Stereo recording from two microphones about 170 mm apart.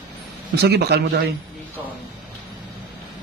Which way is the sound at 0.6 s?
75° right (ahead or behind).